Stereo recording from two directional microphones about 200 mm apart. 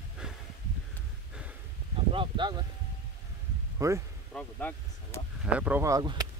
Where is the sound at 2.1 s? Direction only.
25° right (ahead or behind).